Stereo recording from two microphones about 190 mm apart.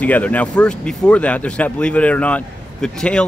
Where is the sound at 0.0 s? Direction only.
10° left (ahead or behind).